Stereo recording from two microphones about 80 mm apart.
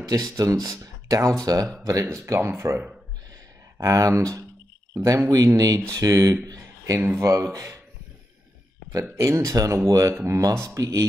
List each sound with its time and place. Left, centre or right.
0.0 s speech: right
2.3 s speech: right
6.4 s a sound: right
7.2 s speech: right
9.1 s speech: right